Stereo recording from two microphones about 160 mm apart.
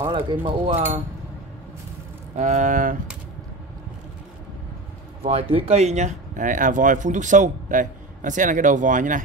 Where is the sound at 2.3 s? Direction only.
50° right (ahead or behind).